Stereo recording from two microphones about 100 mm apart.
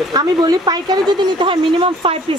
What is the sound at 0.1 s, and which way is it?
Speech, 45° right (ahead or behind).